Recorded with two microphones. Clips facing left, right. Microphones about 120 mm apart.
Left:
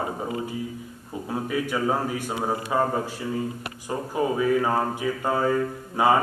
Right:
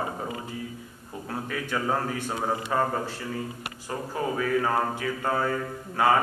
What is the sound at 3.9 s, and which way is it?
A man's voice, 15° left (ahead or behind).